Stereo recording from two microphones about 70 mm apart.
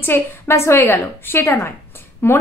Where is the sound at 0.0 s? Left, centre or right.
Left.